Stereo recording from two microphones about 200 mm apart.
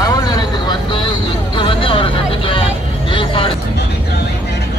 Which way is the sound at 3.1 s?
25° left (ahead or behind).